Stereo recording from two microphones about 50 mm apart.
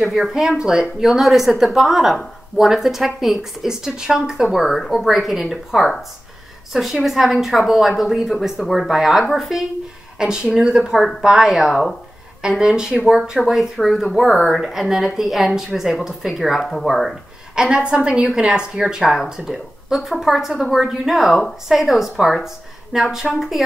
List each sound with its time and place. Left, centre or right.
0.0 s a woman's voice: centre
11.0 s a woman's voice: centre
11.2 s a woman's voice: centre
11.7 s a woman's voice: centre
12.4 s a woman's voice: centre
13.0 s a woman's voice: centre
17.6 s a woman's voice: centre